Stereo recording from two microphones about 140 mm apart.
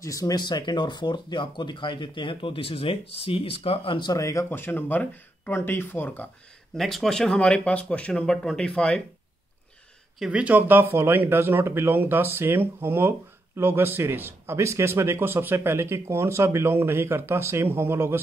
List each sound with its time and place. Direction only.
0.0 s speech: 25° left (ahead or behind)
6.8 s speech: centre (ahead or behind)
10.1 s a man's voice: 5° right (ahead or behind)